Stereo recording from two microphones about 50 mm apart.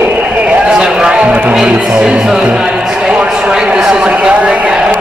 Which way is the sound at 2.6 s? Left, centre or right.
Centre.